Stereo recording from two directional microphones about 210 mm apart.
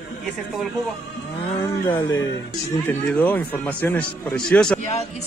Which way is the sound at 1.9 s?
25° left (ahead or behind).